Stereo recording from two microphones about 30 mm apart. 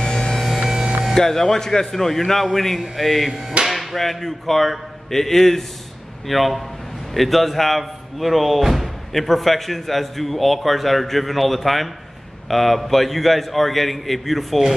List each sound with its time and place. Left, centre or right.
0.0 s a sound: left
1.1 s a man's voice: centre
3.3 s hammer: centre
3.7 s speech: centre
6.2 s speech: centre